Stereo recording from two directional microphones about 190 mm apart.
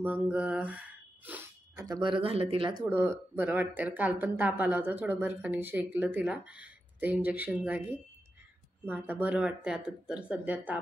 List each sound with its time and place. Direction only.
0.0 s speech: 10° right (ahead or behind)
1.9 s speech: 25° right (ahead or behind)
2.9 s speech: 10° right (ahead or behind)